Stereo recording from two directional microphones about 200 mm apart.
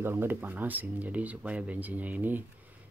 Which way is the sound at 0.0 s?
10° right (ahead or behind).